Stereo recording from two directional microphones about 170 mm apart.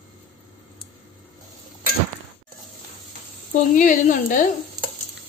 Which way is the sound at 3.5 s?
50° left (ahead or behind).